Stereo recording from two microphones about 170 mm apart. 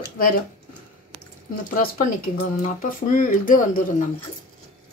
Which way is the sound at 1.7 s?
55° left (ahead or behind).